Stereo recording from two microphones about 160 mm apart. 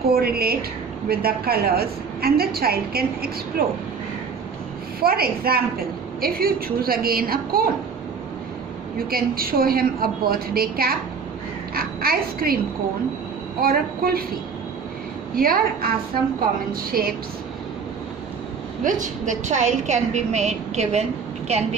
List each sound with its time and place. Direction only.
0.1 s a woman's voice: 75° right (ahead or behind)
5.0 s a woman's voice: 70° right (ahead or behind)
8.9 s a woman's voice: 70° right (ahead or behind)
13.6 s a woman's voice: 70° right (ahead or behind)
15.3 s a woman's voice: 65° right (ahead or behind)
18.9 s a woman's voice: 50° right (ahead or behind)